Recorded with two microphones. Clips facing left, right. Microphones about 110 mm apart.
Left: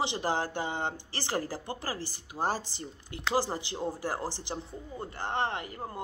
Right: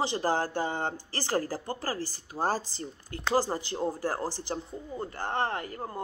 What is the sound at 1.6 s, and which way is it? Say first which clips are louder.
Speech: right 3 dB; 45° right (ahead or behind).